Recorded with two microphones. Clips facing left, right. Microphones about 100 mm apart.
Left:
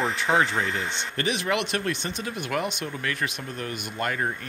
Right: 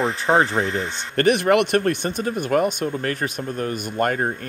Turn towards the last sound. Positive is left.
turn(degrees=-40)  # may be behind; listen again after turning